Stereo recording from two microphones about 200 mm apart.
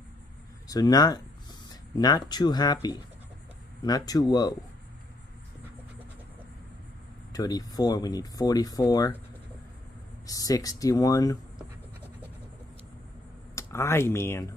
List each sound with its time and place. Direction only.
0.7 s speech: 20° left (ahead or behind)
7.3 s speech: 20° left (ahead or behind)
10.2 s speech: 15° left (ahead or behind)
13.6 s speech: 15° left (ahead or behind)